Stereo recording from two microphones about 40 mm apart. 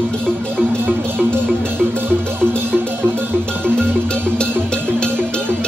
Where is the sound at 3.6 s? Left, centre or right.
Left.